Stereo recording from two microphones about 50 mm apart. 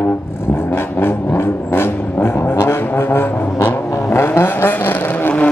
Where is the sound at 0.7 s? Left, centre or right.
Left.